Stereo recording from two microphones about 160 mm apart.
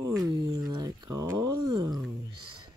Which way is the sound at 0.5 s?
25° right (ahead or behind).